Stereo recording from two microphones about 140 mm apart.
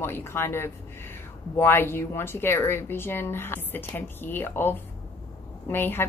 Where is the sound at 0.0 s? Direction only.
15° left (ahead or behind).